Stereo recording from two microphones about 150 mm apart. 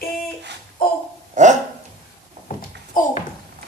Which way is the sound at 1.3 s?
55° right (ahead or behind).